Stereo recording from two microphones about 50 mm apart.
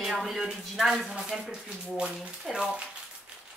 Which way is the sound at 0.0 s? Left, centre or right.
Centre.